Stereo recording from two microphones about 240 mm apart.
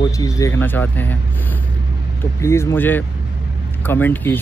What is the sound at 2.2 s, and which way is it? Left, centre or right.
Speech, centre.